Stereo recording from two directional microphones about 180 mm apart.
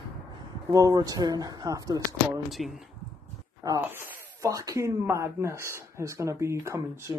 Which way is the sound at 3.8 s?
10° right (ahead or behind).